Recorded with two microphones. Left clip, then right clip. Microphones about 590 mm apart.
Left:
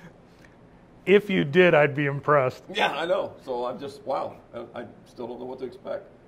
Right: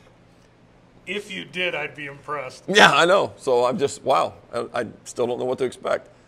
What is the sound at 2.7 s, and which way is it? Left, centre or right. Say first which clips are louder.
A man's voice: right 12 dB; right.